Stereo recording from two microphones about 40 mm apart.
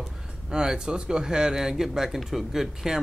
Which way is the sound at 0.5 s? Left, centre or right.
Centre.